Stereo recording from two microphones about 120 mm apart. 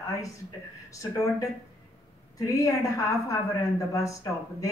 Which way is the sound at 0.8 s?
25° left (ahead or behind).